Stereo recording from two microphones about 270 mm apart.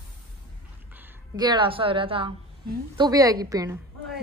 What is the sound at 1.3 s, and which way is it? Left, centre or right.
A woman's voice, centre.